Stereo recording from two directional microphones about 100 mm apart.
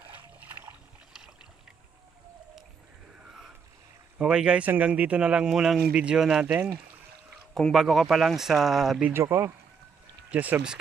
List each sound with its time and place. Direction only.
3.3 s a sound: 5° right (ahead or behind)
4.2 s speech: 10° right (ahead or behind)
7.5 s speech: centre (ahead or behind)
9.1 s speech: 25° right (ahead or behind)